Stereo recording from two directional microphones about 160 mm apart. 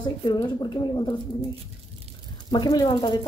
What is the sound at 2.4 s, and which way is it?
Speech, 25° left (ahead or behind).